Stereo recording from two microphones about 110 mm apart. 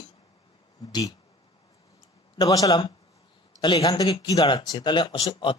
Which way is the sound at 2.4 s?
35° left (ahead or behind).